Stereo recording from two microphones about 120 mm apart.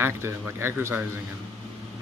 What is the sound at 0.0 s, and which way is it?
Speech, 20° right (ahead or behind).